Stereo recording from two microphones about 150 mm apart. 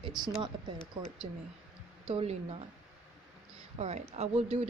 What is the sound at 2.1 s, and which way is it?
Speech, 40° right (ahead or behind).